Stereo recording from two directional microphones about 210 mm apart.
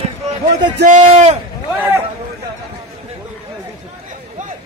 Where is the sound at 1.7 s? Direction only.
15° right (ahead or behind).